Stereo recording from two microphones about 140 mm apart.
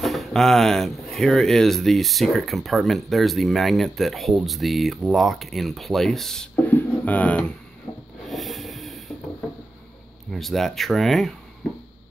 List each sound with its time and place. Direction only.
0.0 s speech: centre (ahead or behind)
7.9 s rub: 20° left (ahead or behind)
8.3 s a sound: centre (ahead or behind)
10.3 s speech: centre (ahead or behind)